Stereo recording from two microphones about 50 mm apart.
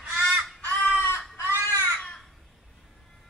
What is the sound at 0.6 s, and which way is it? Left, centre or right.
Crow, left.